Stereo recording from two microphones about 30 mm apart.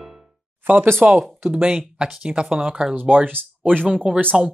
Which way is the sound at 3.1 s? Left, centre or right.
Right.